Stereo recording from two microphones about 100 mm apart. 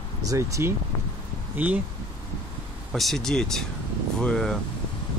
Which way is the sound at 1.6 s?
15° right (ahead or behind).